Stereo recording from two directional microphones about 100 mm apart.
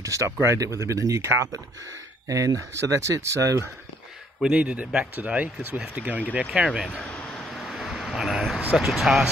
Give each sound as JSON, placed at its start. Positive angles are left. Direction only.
{"t": 0.0, "sound": "speech", "side_deg": -30}
{"t": 4.4, "sound": "speech", "side_deg": -10}
{"t": 7.2, "sound": "a sound", "side_deg": 0}
{"t": 8.7, "sound": "speech", "side_deg": 0}